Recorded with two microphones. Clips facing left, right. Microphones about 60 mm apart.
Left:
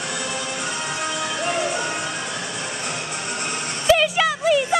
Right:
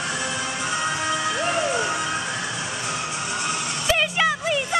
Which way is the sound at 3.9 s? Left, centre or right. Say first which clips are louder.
Left 4 dB; centre.